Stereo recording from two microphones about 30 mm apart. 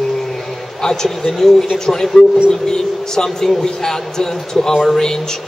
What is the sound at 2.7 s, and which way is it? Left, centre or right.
Speech, centre.